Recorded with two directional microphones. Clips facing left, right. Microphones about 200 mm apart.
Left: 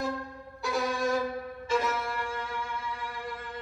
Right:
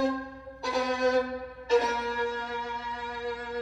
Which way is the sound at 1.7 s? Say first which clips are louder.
Right 5 dB; 40° right (ahead or behind).